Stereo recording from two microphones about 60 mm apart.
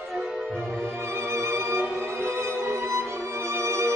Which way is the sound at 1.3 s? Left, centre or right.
Right.